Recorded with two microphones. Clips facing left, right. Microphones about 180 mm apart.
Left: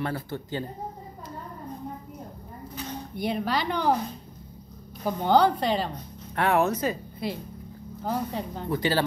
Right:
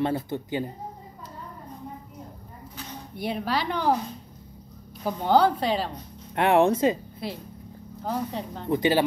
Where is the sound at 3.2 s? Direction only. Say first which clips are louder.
Even; 5° right (ahead or behind).